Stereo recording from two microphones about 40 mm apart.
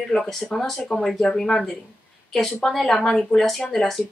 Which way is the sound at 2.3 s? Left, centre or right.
Centre.